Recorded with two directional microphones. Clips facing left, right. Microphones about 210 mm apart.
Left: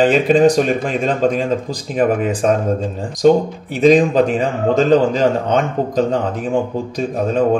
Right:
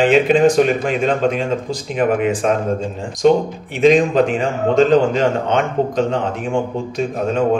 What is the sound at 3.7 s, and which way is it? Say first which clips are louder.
A man's voice: left 1 dB; 40° left (ahead or behind).